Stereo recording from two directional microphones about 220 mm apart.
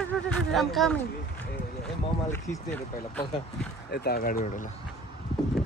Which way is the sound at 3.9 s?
45° left (ahead or behind).